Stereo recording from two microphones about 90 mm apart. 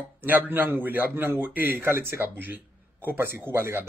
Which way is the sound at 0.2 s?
20° right (ahead or behind).